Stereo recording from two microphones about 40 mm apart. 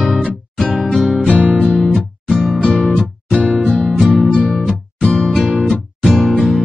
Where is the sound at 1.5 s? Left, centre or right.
Left.